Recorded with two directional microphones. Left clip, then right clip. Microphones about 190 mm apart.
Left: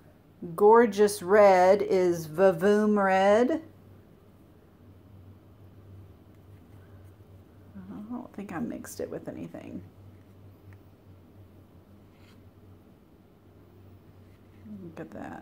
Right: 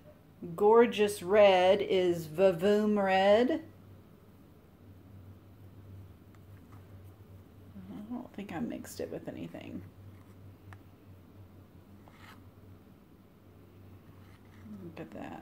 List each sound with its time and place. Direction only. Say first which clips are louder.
0.7 s speech: left 4 dB; 10° left (ahead or behind)
2.0 s speech: left 4 dB; 25° left (ahead or behind)
8.1 s a sound: left 3 dB; 15° left (ahead or behind)
8.8 s speech: left 4 dB; centre (ahead or behind)
9.1 s speech: left 3 dB; 15° left (ahead or behind)